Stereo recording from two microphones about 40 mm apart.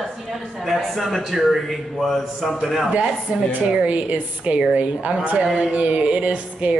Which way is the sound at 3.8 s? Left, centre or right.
Right.